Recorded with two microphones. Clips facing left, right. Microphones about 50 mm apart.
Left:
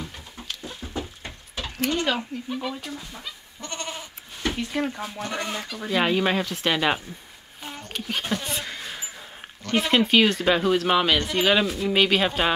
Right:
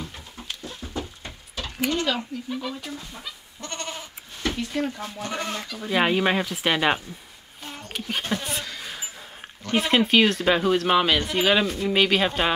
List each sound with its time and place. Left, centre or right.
0.0 s a sound: centre
0.7 s a sound: centre
2.1 s speech: centre
2.8 s goat: centre
4.4 s speech: centre
5.9 s speech: centre
8.7 s basketball bounce: centre
9.6 s speech: centre